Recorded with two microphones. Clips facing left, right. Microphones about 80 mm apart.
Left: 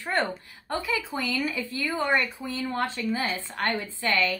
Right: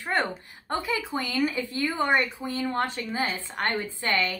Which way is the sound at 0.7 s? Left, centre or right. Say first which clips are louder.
Right 1 dB; right.